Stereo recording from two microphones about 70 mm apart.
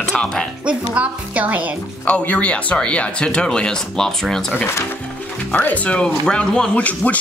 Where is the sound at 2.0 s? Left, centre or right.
Centre.